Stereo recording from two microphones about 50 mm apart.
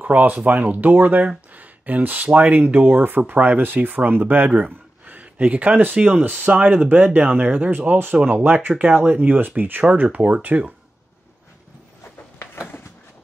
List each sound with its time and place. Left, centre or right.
0.0 s speech: right
4.5 s speech: right
9.8 s speech: right